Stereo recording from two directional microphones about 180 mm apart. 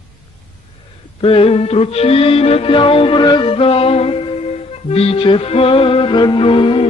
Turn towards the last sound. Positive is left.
turn(degrees=30)  # may be behind; listen again after turning